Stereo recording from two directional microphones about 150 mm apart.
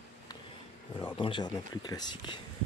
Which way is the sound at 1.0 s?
35° left (ahead or behind).